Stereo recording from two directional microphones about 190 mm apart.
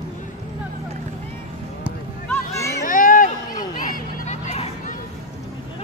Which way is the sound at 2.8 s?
45° left (ahead or behind).